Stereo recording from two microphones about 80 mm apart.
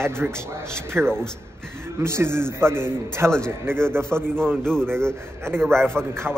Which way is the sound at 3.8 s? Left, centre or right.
Right.